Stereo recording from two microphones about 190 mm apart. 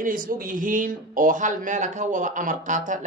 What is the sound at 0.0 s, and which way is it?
Speech, 45° right (ahead or behind).